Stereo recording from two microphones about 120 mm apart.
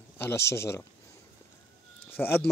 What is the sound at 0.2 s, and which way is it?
Speech, 20° left (ahead or behind).